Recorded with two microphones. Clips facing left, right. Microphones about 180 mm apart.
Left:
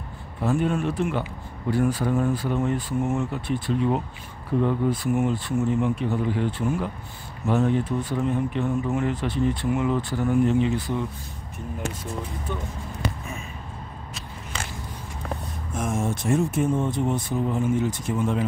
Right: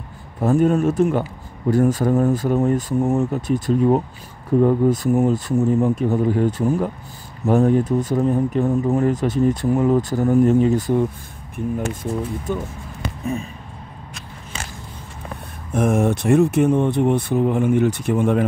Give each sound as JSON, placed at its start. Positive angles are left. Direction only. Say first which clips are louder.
{"t": 0.4, "sound": "speech", "louder": "right 7 dB", "side_deg": -40}
{"t": 13.2, "sound": "a sound", "louder": "right 11 dB", "side_deg": -35}
{"t": 15.7, "sound": "speech", "louder": "right 9 dB", "side_deg": -60}